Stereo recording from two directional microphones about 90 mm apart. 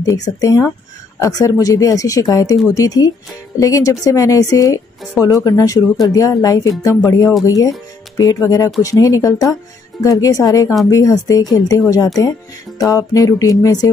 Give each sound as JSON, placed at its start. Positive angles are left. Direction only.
{"t": 0.0, "sound": "speech", "side_deg": 40}